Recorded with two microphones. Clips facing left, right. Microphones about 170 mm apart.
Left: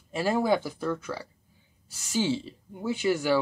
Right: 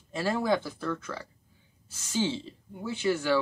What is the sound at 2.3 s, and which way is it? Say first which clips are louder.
Speech: left 2 dB; 15° left (ahead or behind).